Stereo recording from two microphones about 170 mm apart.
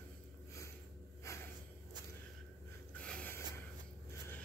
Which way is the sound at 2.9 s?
5° left (ahead or behind).